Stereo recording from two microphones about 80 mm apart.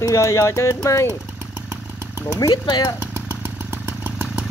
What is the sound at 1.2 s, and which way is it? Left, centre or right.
Chainsaw, centre.